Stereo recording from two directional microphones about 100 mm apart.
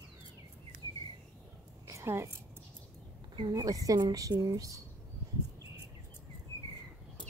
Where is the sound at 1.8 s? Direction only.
30° right (ahead or behind).